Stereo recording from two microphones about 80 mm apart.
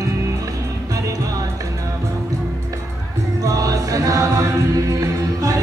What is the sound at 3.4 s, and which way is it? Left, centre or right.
Music, right.